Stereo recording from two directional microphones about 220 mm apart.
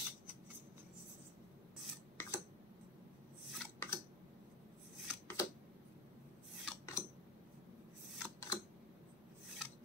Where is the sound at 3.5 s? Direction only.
5° left (ahead or behind).